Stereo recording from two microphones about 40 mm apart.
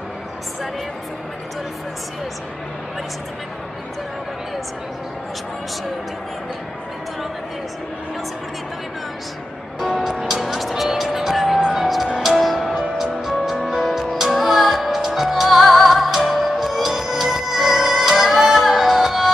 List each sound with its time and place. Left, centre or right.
10.0 s speech: centre
11.7 s music: centre